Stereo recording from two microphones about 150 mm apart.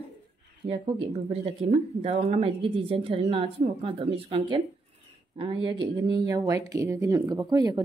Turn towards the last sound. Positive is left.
turn(degrees=-25)  # may be behind; listen again after turning